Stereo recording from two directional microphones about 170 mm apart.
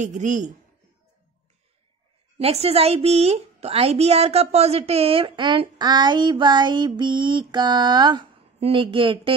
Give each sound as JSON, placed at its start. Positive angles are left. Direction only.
{"t": 0.0, "sound": "speech", "side_deg": -45}
{"t": 2.3, "sound": "a woman's voice", "side_deg": -35}